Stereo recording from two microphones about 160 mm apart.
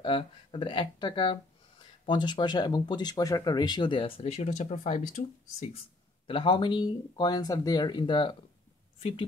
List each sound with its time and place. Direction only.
0.0 s speech: 30° left (ahead or behind); by 5.8 s 45° left (ahead or behind)
6.2 s speech: 35° left (ahead or behind)